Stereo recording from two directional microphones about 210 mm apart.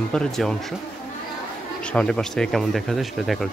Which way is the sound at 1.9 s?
5° left (ahead or behind).